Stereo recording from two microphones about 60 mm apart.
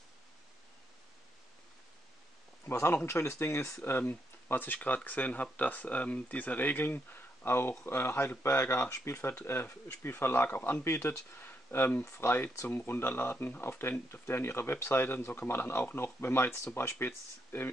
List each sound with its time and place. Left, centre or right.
2.6 s a man's voice: left
4.0 s speech: left
8.9 s speech: left
9.5 s speech: left
12.0 s speech: left
12.6 s speech: left